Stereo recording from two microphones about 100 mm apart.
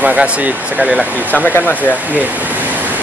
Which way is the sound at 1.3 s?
20° left (ahead or behind).